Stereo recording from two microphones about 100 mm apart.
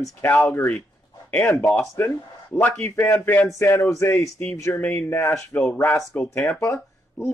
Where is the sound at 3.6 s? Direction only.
30° left (ahead or behind).